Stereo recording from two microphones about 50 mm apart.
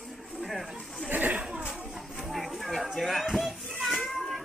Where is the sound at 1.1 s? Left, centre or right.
Right.